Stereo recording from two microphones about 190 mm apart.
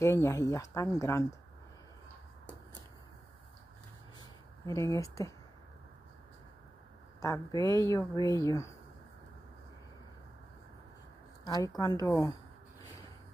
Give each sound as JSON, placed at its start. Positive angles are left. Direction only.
{"t": 0.0, "sound": "speech", "side_deg": 15}
{"t": 4.2, "sound": "a sound", "side_deg": 15}
{"t": 7.2, "sound": "a woman's voice", "side_deg": 15}
{"t": 7.5, "sound": "a woman's voice", "side_deg": -20}
{"t": 7.8, "sound": "speech", "side_deg": 15}
{"t": 11.4, "sound": "a woman's voice", "side_deg": 20}